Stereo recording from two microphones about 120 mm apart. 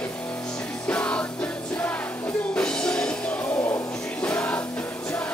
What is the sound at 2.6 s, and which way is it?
Music, 5° left (ahead or behind).